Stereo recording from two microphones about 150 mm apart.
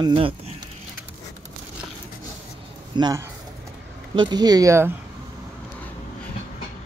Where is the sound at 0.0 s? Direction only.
35° right (ahead or behind).